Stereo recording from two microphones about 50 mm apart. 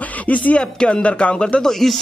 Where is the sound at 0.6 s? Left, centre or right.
Centre.